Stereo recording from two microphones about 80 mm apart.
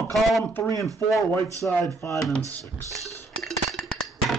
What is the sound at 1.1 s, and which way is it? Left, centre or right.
Speech, left.